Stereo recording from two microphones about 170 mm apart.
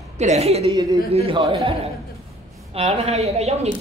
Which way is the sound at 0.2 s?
40° right (ahead or behind).